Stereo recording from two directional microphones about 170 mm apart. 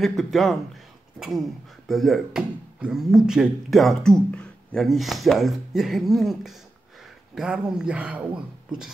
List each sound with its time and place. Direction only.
0.0 s speech: centre (ahead or behind)
1.9 s speech: centre (ahead or behind)